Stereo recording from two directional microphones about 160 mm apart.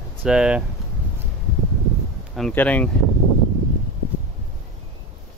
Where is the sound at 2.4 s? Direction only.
10° left (ahead or behind).